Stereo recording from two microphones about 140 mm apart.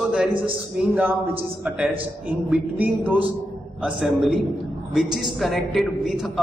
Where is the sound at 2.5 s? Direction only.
10° right (ahead or behind).